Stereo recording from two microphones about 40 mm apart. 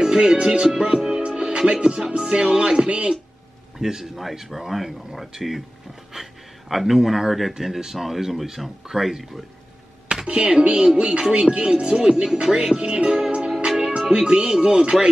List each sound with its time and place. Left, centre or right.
0.0 s speech: centre
0.7 s music: centre
3.7 s speech: centre
6.7 s speech: centre
10.2 s speech: right
13.7 s music: centre
14.1 s speech: right